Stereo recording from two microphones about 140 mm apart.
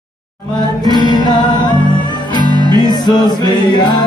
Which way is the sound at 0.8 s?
30° left (ahead or behind).